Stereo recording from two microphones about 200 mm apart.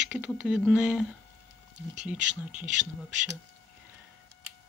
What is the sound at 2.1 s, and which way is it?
Speech, 40° right (ahead or behind).